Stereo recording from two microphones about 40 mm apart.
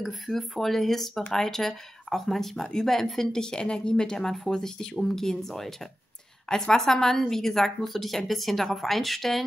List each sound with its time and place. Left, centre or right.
0.0 s speech: centre